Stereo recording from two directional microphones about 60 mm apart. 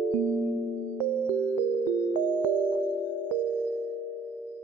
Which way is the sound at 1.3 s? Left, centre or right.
Left.